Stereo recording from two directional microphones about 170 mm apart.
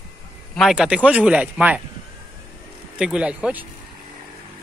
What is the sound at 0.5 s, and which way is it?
Speech, centre (ahead or behind).